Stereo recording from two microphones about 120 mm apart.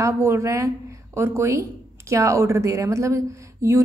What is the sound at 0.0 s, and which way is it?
Speech, 20° right (ahead or behind).